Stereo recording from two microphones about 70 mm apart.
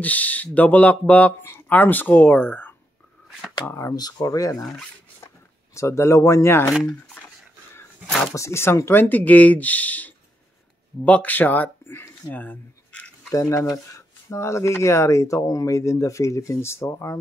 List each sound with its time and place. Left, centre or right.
0.0 s speech: left
3.9 s speech: left
5.8 s speech: left
8.4 s speech: left
13.3 s speech: left